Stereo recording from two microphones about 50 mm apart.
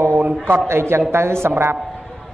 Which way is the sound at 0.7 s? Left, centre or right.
Right.